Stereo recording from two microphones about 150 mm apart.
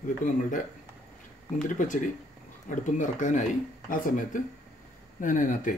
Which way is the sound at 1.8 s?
60° left (ahead or behind).